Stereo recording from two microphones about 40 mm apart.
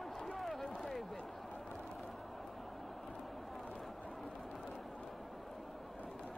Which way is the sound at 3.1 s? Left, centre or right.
Centre.